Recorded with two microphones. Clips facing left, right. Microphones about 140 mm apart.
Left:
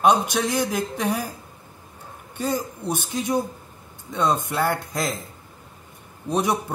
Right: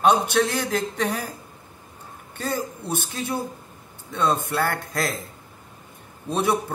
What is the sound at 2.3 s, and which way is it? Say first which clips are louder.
A man's voice: left 2 dB; 15° left (ahead or behind).